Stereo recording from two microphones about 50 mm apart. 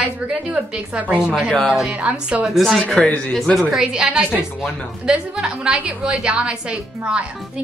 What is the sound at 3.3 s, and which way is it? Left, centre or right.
Speech, centre.